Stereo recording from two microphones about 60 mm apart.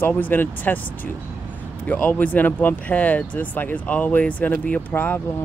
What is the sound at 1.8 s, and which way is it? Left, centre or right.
Speech, left.